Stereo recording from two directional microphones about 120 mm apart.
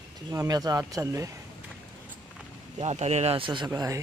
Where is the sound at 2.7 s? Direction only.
65° right (ahead or behind); by 3.7 s 45° right (ahead or behind).